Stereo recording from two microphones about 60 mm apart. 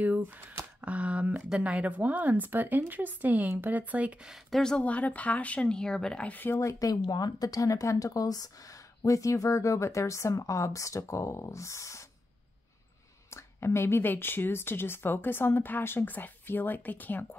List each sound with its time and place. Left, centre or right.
0.7 s a woman's voice: right
4.6 s speech: centre
4.8 s speech: left
6.5 s speech: left
9.0 s speech: left
13.3 s speech: left